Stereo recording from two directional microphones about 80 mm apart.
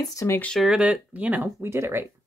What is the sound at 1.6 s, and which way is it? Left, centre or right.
Speech, right.